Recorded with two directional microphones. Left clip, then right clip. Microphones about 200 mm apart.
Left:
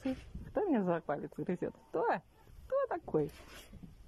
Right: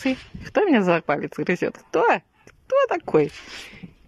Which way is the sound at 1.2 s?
15° right (ahead or behind).